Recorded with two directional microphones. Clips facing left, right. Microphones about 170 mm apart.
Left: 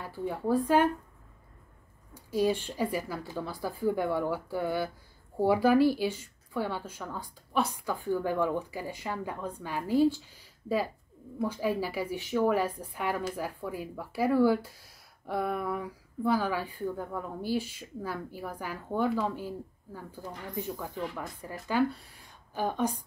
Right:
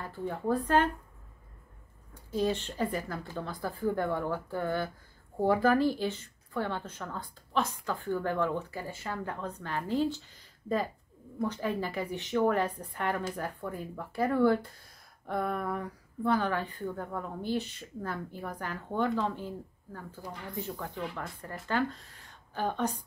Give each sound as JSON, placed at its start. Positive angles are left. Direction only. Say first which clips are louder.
{"t": 0.0, "sound": "a woman's voice", "louder": "left 1 dB", "side_deg": 10}
{"t": 2.1, "sound": "a woman's voice", "louder": "left 2 dB", "side_deg": 10}